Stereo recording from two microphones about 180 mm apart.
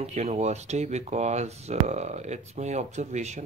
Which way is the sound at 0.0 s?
35° right (ahead or behind).